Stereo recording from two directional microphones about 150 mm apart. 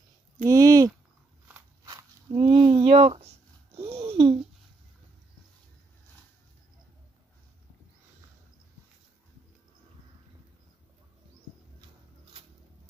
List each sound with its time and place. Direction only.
0.5 s speech: 25° right (ahead or behind)
1.9 s walk: 25° right (ahead or behind)
2.4 s a sound: 40° right (ahead or behind)